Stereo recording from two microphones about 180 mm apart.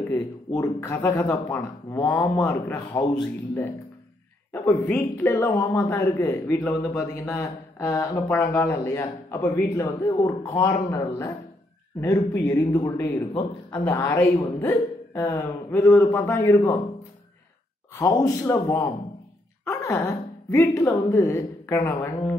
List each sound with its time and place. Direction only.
0.1 s speech: 15° left (ahead or behind)
17.9 s a woman's voice: 15° left (ahead or behind)